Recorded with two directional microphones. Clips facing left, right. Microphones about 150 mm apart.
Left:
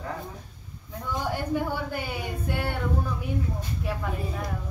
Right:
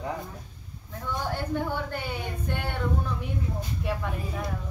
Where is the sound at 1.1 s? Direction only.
10° left (ahead or behind).